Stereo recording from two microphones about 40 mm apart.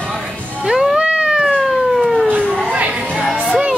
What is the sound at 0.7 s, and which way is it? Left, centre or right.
Music, centre.